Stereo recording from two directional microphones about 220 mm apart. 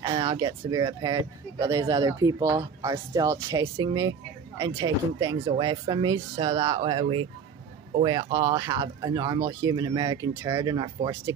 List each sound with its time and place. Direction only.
0.0 s speech: 20° right (ahead or behind)